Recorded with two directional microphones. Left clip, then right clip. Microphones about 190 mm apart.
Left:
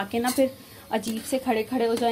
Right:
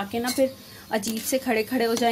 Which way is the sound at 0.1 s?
Centre (ahead or behind).